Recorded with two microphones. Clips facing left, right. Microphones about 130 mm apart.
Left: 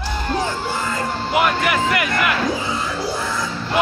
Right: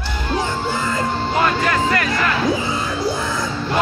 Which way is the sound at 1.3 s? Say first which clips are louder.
Left 1 dB; 15° left (ahead or behind).